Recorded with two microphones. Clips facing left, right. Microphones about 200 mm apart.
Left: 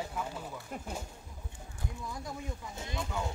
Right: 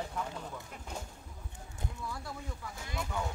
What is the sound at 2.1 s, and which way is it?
Speech, 20° left (ahead or behind).